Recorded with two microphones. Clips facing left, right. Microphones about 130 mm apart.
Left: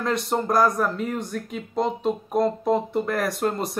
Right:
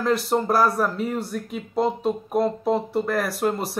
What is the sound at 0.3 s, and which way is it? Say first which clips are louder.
Speech: left 2 dB; 5° right (ahead or behind).